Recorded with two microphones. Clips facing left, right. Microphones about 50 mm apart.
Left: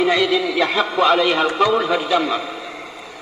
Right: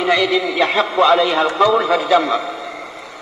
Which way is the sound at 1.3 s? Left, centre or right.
Right.